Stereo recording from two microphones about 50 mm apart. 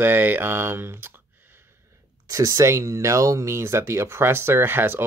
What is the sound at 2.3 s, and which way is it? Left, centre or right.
Speech, right.